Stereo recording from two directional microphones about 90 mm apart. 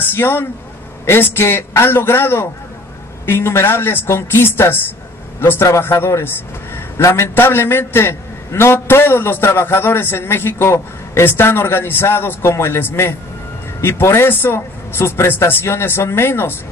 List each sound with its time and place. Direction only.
0.1 s a man's voice: 25° left (ahead or behind)